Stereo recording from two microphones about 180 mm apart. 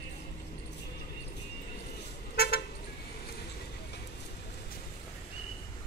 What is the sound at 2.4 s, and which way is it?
Vehicle, 60° left (ahead or behind).